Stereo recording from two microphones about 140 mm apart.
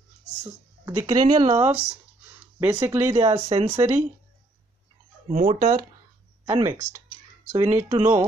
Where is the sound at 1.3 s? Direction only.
30° right (ahead or behind).